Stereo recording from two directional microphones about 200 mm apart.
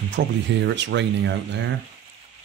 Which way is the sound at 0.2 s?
60° right (ahead or behind).